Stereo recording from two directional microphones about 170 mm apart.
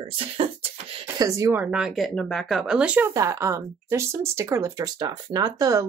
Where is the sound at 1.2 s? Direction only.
20° right (ahead or behind).